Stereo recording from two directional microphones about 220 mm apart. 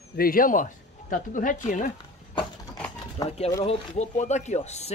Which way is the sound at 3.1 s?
30° left (ahead or behind).